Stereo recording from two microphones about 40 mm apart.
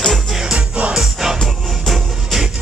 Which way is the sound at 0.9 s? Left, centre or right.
Centre.